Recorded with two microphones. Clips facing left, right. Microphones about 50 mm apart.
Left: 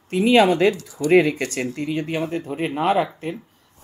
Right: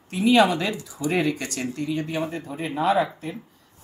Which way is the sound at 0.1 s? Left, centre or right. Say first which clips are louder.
Left 3 dB; left.